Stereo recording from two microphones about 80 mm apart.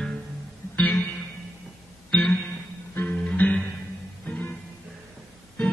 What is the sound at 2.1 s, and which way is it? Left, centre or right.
Music, centre.